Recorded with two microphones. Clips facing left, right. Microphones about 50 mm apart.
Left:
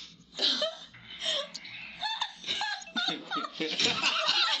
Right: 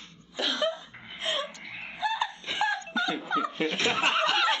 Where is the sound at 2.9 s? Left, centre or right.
Centre.